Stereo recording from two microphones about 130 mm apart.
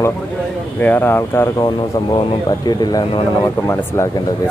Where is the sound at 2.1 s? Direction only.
35° left (ahead or behind).